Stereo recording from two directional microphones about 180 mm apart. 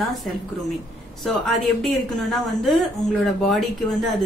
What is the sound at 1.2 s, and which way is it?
A woman's voice, centre (ahead or behind).